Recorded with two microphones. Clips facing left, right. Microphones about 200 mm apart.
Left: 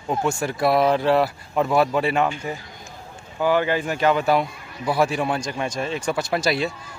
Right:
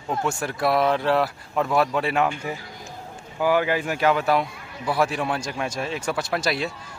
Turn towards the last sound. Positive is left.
turn(degrees=0)  # may be behind; listen again after turning